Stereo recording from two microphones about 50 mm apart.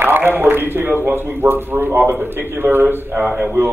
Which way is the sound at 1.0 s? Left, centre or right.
Right.